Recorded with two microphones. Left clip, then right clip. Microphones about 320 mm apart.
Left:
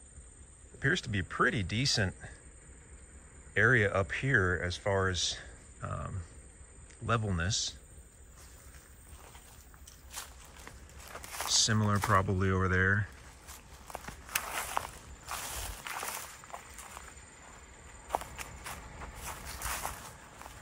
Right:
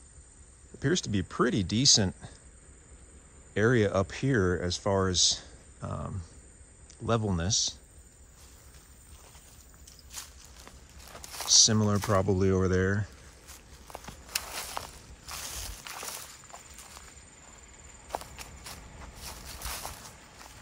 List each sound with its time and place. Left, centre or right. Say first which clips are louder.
0.7 s speech: right 1 dB; centre
3.5 s speech: right 1 dB; centre
7.1 s speech: right 3 dB; centre
9.8 s walk: right 1 dB; centre
11.1 s a sound: right 6 dB; centre